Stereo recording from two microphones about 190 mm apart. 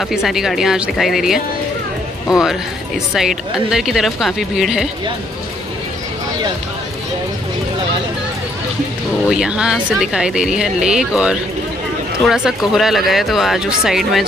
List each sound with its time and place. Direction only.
0.1 s speech: centre (ahead or behind)
9.3 s speech: 5° right (ahead or behind)